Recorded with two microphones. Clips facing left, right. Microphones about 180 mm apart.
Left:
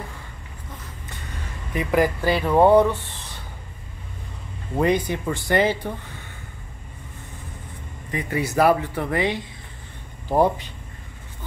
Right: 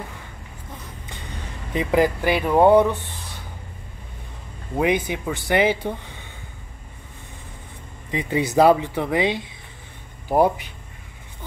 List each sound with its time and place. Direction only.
1.7 s speech: 20° right (ahead or behind)
4.7 s speech: 5° right (ahead or behind)
8.1 s speech: 20° right (ahead or behind)